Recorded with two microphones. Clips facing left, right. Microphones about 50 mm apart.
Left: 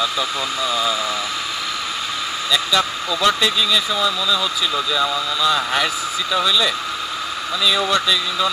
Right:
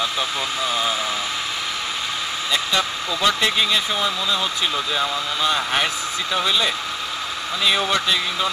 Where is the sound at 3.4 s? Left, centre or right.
Right.